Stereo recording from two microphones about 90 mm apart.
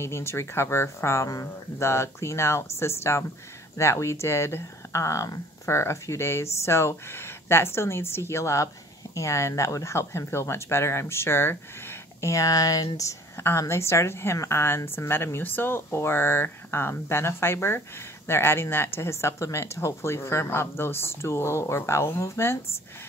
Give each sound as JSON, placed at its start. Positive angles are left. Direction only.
{"t": 0.0, "sound": "speech", "side_deg": 30}
{"t": 13.4, "sound": "speech", "side_deg": 30}